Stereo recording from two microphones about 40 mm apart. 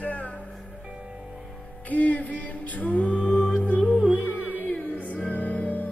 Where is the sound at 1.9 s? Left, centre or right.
Left.